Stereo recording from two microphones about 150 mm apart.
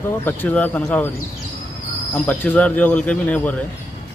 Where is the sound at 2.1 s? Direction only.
10° left (ahead or behind).